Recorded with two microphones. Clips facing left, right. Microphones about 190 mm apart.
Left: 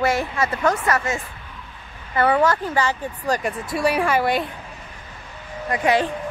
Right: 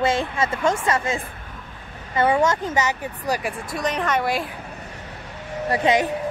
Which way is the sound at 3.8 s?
10° left (ahead or behind).